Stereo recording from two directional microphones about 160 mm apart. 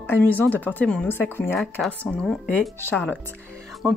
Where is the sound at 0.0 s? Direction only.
15° left (ahead or behind).